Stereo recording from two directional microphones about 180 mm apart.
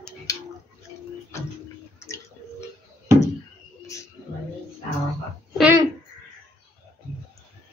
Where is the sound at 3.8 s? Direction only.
15° left (ahead or behind).